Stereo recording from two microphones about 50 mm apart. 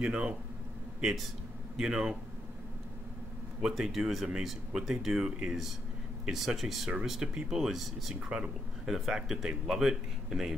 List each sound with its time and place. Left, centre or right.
0.0 s speech: centre
1.8 s speech: centre
3.6 s speech: centre
7.3 s speech: centre